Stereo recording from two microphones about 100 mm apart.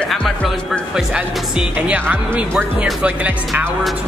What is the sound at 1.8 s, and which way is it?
Speech, 15° right (ahead or behind).